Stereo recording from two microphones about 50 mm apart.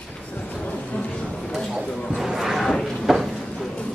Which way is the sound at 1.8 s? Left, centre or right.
Centre.